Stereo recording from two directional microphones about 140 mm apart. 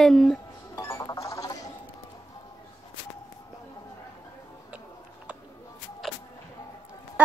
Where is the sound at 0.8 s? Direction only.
20° left (ahead or behind).